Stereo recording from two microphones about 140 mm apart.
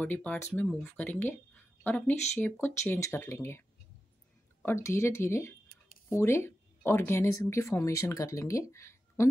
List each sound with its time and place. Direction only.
0.0 s speech: 10° left (ahead or behind)
4.6 s speech: 20° left (ahead or behind)